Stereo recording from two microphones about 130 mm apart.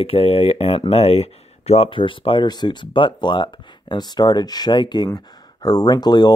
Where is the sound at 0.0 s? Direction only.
45° left (ahead or behind).